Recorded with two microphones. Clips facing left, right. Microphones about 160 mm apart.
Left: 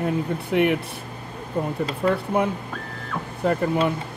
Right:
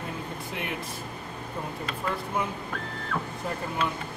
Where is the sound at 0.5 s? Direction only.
65° left (ahead or behind).